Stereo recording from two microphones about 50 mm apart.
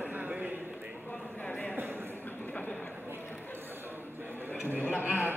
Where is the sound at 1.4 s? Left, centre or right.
Left.